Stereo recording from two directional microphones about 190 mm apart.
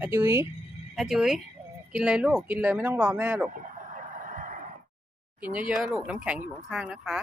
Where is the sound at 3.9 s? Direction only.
45° right (ahead or behind).